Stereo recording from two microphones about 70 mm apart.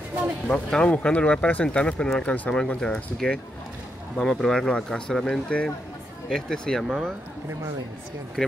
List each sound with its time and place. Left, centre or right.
0.5 s speech: centre
8.4 s speech: centre